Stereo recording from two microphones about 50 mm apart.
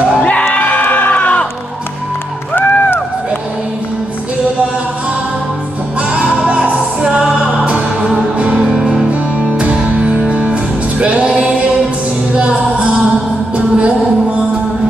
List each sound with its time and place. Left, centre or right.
0.2 s music: left
0.6 s crowd: left
2.6 s run: left
6.1 s music: right